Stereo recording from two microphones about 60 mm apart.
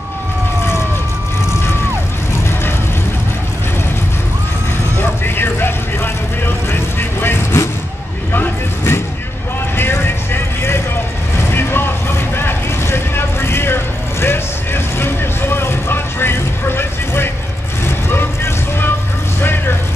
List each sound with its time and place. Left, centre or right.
4.9 s vehicle: left